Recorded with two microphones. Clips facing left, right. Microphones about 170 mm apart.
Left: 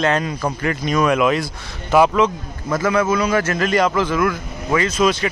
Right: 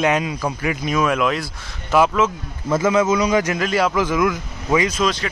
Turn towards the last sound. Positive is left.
turn(degrees=10)  # may be behind; listen again after turning